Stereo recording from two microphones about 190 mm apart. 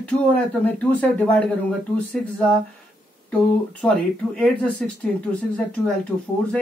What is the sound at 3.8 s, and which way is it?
Speech, 5° left (ahead or behind).